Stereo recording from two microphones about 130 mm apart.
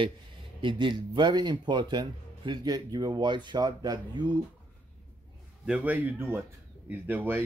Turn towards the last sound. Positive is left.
turn(degrees=-15)  # may be behind; listen again after turning